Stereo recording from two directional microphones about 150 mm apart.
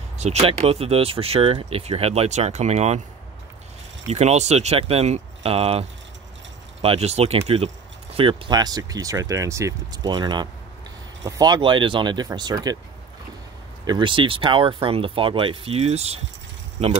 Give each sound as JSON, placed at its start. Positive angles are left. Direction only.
{"t": 0.2, "sound": "speech", "side_deg": -45}
{"t": 4.1, "sound": "speech", "side_deg": -45}
{"t": 13.8, "sound": "speech", "side_deg": -30}